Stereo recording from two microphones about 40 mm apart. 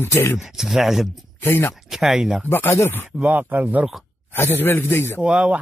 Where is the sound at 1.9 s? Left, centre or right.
Centre.